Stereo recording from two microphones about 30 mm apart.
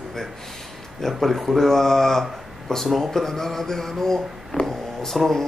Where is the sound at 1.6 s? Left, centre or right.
Centre.